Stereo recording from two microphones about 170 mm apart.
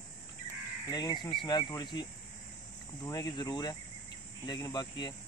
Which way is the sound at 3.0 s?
25° left (ahead or behind).